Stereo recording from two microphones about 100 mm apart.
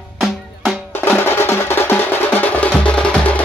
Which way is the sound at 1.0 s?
20° left (ahead or behind).